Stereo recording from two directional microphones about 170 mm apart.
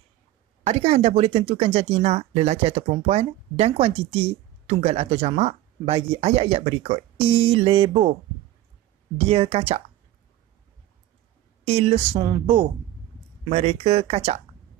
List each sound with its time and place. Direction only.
0.7 s speech: 40° right (ahead or behind)
9.3 s speech: 35° right (ahead or behind)
11.6 s speech: 35° right (ahead or behind)
13.5 s speech: 40° right (ahead or behind)